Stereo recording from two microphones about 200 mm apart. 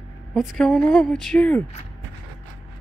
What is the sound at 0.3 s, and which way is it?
A woman's voice, centre (ahead or behind).